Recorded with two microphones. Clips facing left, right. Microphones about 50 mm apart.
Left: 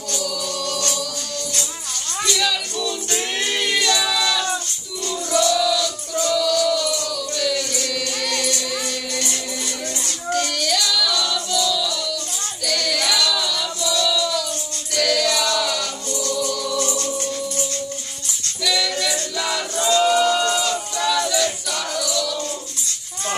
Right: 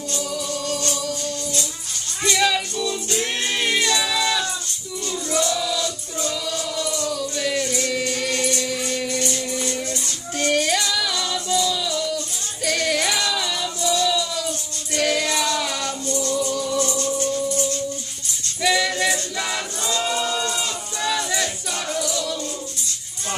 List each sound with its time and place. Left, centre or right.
2.2 s music: right
3.4 s choir: right
4.1 s music: right
10.4 s female singing: right
12.6 s music: right
15.0 s choir: right
15.5 s music: right
18.6 s music: right
19.9 s a sound: left
20.6 s music: right